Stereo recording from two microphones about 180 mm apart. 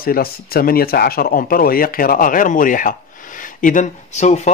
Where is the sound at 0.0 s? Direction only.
55° left (ahead or behind).